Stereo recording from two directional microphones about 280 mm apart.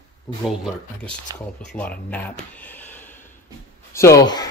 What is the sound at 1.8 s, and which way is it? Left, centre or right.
Speech, centre.